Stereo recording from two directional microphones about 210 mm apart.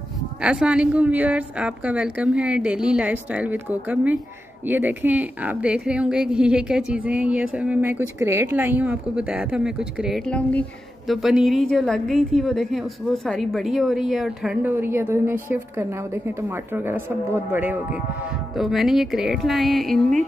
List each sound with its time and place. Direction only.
0.4 s a woman's voice: 5° right (ahead or behind)